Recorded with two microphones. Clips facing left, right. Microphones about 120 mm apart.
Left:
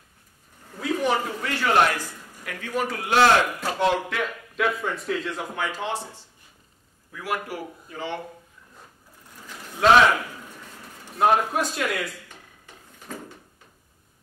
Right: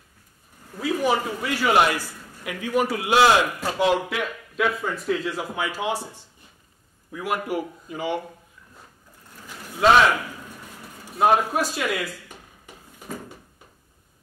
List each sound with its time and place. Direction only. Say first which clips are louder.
0.7 s a man's voice: right 1 dB; 5° right (ahead or behind)
7.1 s a man's voice: right 3 dB; 20° right (ahead or behind)
9.8 s a man's voice: even; 5° right (ahead or behind)
11.1 s a man's voice: right 1 dB; 5° right (ahead or behind)
13.1 s door: right 2 dB; 10° right (ahead or behind)